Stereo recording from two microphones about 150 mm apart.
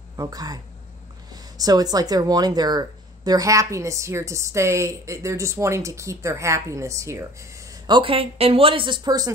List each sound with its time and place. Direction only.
0.1 s speech: 25° right (ahead or behind)
7.8 s speech: 35° right (ahead or behind)